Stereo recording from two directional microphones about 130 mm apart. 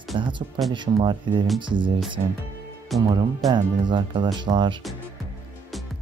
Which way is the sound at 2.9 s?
Centre (ahead or behind).